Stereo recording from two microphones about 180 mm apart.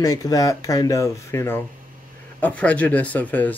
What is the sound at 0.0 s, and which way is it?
Speech, 20° left (ahead or behind).